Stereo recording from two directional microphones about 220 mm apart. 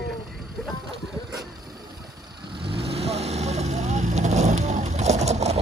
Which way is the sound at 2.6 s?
25° right (ahead or behind).